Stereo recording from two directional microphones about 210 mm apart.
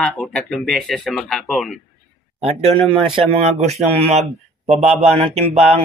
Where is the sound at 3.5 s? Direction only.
30° right (ahead or behind).